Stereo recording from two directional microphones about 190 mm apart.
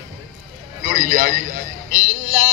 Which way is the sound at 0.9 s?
45° right (ahead or behind).